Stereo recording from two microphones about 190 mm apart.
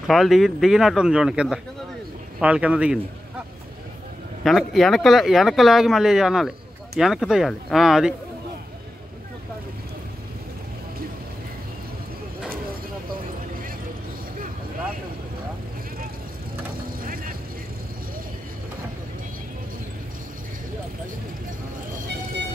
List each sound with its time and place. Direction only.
0.0 s speech: centre (ahead or behind)
4.4 s speech: centre (ahead or behind)
17.0 s vehicle: 50° right (ahead or behind)